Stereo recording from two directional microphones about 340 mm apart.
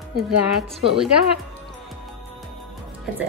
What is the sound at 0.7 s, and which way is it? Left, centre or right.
Speech, centre.